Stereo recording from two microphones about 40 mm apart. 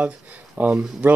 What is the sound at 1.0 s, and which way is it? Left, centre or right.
Speech, right.